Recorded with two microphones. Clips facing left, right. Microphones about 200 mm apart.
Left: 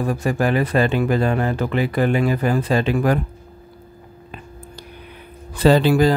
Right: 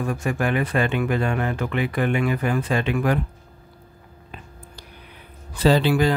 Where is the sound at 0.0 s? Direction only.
35° left (ahead or behind).